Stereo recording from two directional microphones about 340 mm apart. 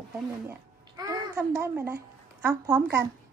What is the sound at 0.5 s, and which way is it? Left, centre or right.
A child's voice, centre.